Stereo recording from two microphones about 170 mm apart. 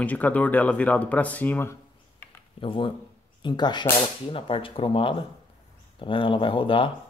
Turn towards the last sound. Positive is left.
turn(degrees=30)  # may be behind; listen again after turning